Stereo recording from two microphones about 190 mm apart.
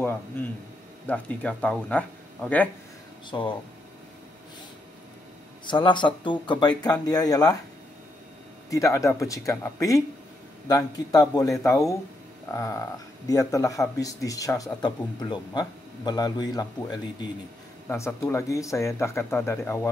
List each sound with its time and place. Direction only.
1.0 s speech: 5° left (ahead or behind)
3.3 s a man's voice: 25° left (ahead or behind)
5.7 s a man's voice: 25° left (ahead or behind)
8.6 s a man's voice: 15° left (ahead or behind)